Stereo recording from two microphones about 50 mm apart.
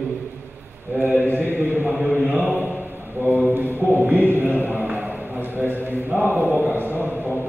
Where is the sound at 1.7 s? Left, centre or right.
Right.